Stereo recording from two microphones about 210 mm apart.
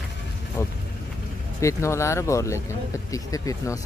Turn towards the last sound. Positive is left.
turn(degrees=15)  # may be behind; listen again after turning